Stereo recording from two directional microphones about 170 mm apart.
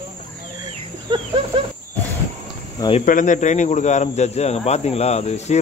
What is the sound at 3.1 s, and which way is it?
Speech, 50° left (ahead or behind).